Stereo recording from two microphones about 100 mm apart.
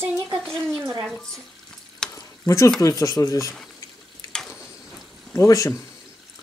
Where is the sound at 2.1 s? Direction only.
30° left (ahead or behind).